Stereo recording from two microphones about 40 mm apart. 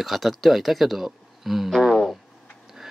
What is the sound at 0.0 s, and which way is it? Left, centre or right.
Speech, centre.